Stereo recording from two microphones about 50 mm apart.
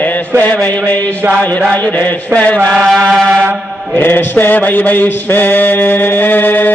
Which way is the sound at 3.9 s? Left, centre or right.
Left.